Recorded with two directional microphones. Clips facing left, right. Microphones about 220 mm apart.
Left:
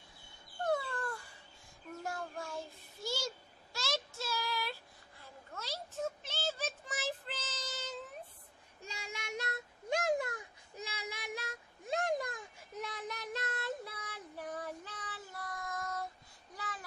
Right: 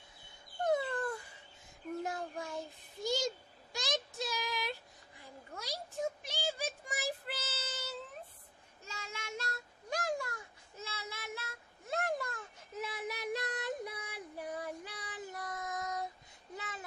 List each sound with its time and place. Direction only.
0.7 s dog: 20° right (ahead or behind)
2.0 s child singing: 20° right (ahead or behind)
8.8 s child singing: 15° left (ahead or behind)
12.7 s child singing: 5° right (ahead or behind)
16.5 s a sound: 25° right (ahead or behind)